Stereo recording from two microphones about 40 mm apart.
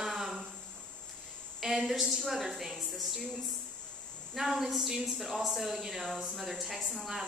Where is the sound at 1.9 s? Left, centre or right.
Centre.